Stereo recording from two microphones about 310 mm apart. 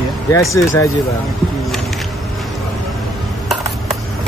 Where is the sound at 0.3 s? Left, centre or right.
Centre.